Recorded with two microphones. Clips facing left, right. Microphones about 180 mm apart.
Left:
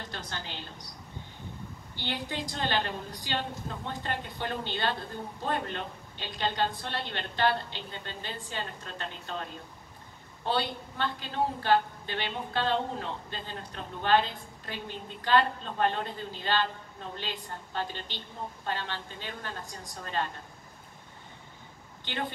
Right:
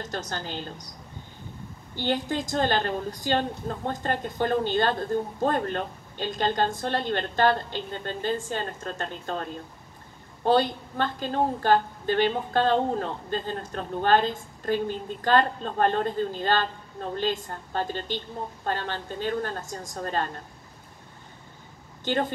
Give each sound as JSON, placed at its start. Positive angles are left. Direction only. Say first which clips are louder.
{"t": 0.0, "sound": "a woman's voice", "louder": "right 7 dB", "side_deg": -45}
{"t": 2.0, "sound": "a woman's voice", "louder": "right 8 dB", "side_deg": -45}
{"t": 22.0, "sound": "speech", "louder": "right 9 dB", "side_deg": -45}